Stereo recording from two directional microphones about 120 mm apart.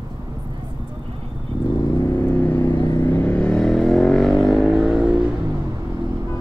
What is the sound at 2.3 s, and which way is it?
Vehicle, 15° left (ahead or behind).